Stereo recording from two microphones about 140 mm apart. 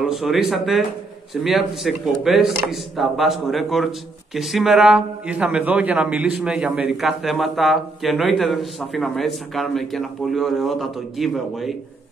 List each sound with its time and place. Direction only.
0.0 s a man's voice: centre (ahead or behind)